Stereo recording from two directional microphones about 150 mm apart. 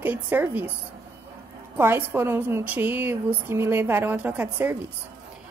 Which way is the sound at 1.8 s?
15° right (ahead or behind).